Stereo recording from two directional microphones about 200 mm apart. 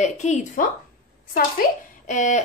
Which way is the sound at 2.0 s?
40° left (ahead or behind).